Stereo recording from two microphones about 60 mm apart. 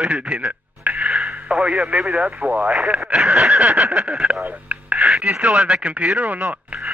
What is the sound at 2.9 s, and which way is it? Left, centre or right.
Speech, centre.